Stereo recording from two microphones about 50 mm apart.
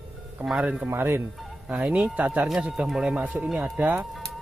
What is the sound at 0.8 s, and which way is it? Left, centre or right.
Speech, right.